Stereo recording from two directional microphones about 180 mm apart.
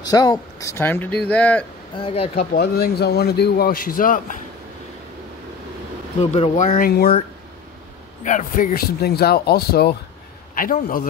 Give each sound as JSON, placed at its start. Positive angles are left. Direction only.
{"t": 0.1, "sound": "speech", "side_deg": 20}
{"t": 2.0, "sound": "speech", "side_deg": 30}
{"t": 2.3, "sound": "a man's voice", "side_deg": 60}
{"t": 6.3, "sound": "speech", "side_deg": 40}
{"t": 6.9, "sound": "a man's voice", "side_deg": 60}
{"t": 8.2, "sound": "a man's voice", "side_deg": 45}